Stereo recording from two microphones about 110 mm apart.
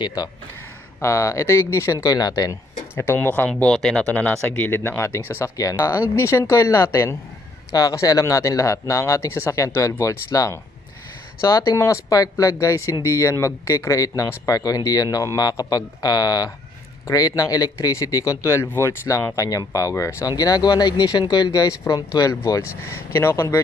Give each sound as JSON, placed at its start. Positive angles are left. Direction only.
{"t": 0.0, "sound": "speech", "side_deg": 35}
{"t": 1.0, "sound": "speech", "side_deg": 25}
{"t": 3.0, "sound": "speech", "side_deg": 20}